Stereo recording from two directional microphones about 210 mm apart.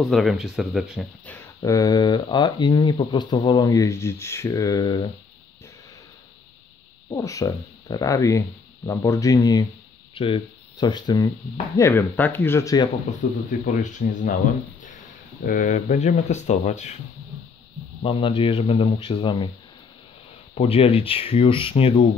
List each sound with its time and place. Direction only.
0.0 s speech: centre (ahead or behind); by 5.0 s 15° left (ahead or behind)
7.2 s speech: 15° left (ahead or behind)
13.5 s speech: 35° left (ahead or behind)
15.4 s speech: 40° left (ahead or behind)
18.0 s speech: 25° left (ahead or behind)
20.5 s speech: 25° left (ahead or behind)